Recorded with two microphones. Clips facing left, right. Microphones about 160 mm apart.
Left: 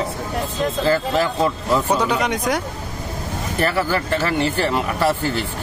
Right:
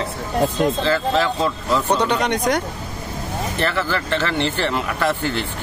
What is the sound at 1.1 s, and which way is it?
Speech, 10° left (ahead or behind).